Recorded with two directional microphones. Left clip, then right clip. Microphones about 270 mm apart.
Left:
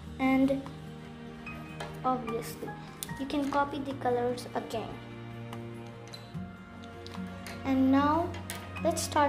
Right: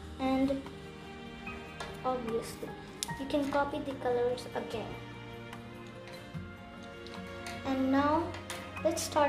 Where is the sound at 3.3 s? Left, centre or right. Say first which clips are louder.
Left 1 dB; left.